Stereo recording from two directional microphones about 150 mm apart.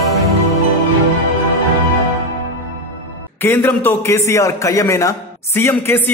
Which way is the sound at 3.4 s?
15° left (ahead or behind).